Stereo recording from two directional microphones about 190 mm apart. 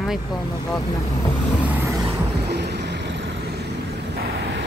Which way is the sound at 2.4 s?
60° right (ahead or behind).